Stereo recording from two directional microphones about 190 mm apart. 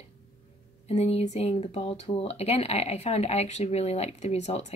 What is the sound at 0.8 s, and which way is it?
Speech, 35° left (ahead or behind).